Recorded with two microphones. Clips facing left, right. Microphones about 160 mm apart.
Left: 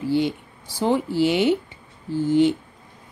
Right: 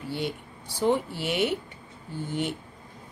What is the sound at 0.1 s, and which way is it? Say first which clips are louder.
Speech: left 9 dB; 90° left.